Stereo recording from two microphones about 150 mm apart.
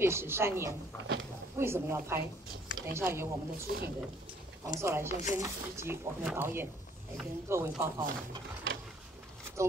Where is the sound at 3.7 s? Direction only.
80° right.